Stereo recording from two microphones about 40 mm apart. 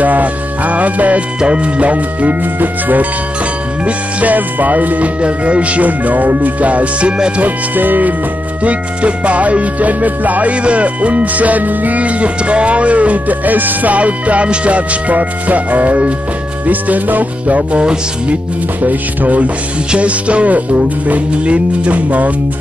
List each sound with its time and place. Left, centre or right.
0.0 s music: right
1.4 s speech: right
2.6 s speech: right
7.4 s speech: right
8.6 s speech: right
10.5 s speech: right
13.9 s speech: right